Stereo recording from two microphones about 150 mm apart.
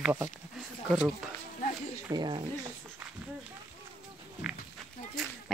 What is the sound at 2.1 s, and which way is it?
Speech, 30° right (ahead or behind).